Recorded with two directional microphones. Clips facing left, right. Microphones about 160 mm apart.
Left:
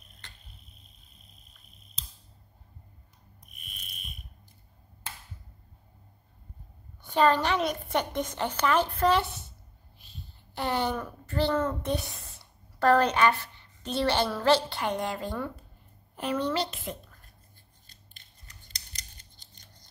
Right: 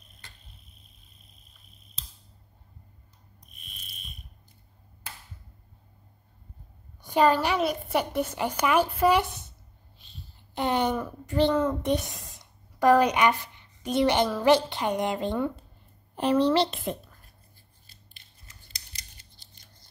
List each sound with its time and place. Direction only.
7.0 s a woman's voice: 10° right (ahead or behind)
10.5 s a child's voice: 20° right (ahead or behind)
16.2 s speech: 30° right (ahead or behind)
18.7 s scissors: 10° right (ahead or behind)